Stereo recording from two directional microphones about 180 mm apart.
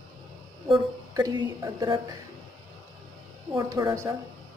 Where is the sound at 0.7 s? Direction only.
20° right (ahead or behind).